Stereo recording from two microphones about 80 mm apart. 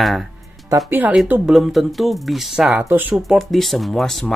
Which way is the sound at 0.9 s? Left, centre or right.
Right.